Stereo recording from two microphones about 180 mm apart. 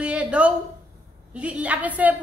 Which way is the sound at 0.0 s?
5° right (ahead or behind).